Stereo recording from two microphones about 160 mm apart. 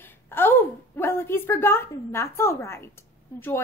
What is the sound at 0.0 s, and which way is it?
A woman's voice, 15° left (ahead or behind).